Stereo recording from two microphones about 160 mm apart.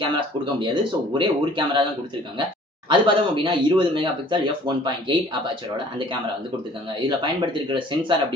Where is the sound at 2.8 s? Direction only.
30° right (ahead or behind).